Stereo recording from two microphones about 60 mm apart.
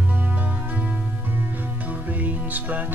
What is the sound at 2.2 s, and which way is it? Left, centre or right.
Music, right.